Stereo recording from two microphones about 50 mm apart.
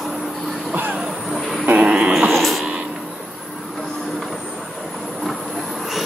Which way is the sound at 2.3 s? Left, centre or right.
Centre.